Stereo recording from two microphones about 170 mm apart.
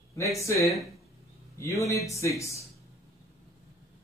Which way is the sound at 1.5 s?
20° left (ahead or behind).